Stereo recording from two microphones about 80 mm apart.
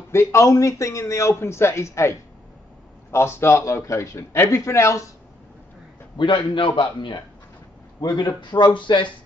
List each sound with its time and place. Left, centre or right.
0.1 s a man's voice: left
6.1 s a man's voice: left
8.0 s a man's voice: left
8.7 s a man's voice: left